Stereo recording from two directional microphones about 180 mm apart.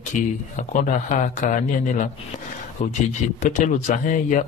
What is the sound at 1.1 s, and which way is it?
Speech, 45° left (ahead or behind).